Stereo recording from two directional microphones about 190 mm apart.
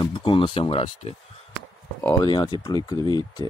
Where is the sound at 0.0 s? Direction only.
25° left (ahead or behind).